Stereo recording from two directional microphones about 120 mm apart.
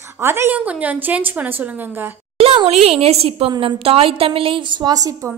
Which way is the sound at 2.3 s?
55° right (ahead or behind).